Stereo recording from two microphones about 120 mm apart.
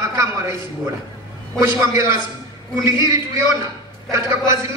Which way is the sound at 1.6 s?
25° right (ahead or behind).